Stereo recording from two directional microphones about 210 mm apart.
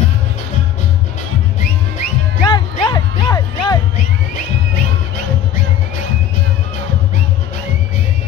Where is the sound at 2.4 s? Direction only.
20° left (ahead or behind).